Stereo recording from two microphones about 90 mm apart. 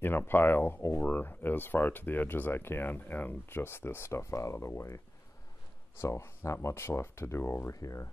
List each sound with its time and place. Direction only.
0.0 s speech: 25° left (ahead or behind)